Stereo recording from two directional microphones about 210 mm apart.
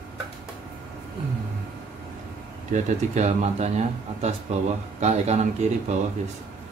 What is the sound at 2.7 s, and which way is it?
Speech, 35° right (ahead or behind).